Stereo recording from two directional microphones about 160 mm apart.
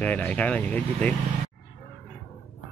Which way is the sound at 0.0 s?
10° left (ahead or behind).